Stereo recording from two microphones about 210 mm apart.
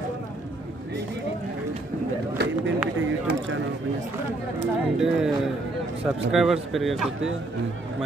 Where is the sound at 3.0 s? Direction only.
65° right (ahead or behind).